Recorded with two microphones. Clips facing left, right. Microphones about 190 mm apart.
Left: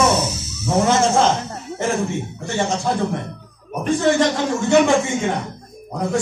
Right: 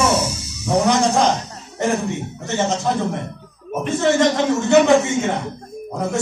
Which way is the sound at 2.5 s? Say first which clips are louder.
Right 1 dB; 20° right (ahead or behind).